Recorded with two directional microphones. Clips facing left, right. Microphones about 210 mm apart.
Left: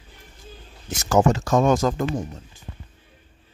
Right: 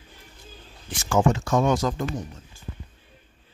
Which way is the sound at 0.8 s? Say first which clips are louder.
Left 3 dB; 40° left (ahead or behind).